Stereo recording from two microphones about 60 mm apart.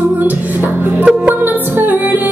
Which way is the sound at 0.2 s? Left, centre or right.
Right.